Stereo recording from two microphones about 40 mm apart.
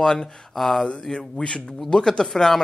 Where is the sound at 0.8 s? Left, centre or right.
Left; by 2.6 s centre.